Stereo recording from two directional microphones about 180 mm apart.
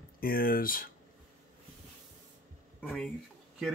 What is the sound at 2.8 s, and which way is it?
Speech, 10° left (ahead or behind).